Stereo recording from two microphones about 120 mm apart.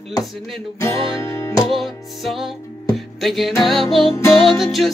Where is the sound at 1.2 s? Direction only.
20° left (ahead or behind).